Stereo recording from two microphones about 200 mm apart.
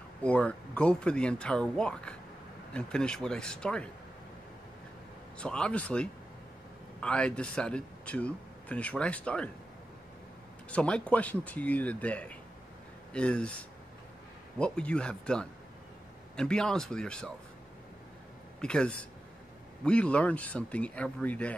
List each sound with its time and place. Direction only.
0.2 s speech: 5° left (ahead or behind)
5.4 s speech: 5° left (ahead or behind)
10.7 s speech: 5° left (ahead or behind)
18.6 s speech: 5° left (ahead or behind)